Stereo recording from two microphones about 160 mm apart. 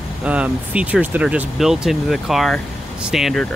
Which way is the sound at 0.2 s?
5° right (ahead or behind).